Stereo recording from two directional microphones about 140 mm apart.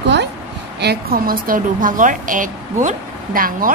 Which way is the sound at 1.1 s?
90° right.